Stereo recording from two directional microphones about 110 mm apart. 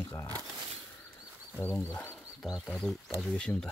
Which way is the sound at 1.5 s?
15° left (ahead or behind).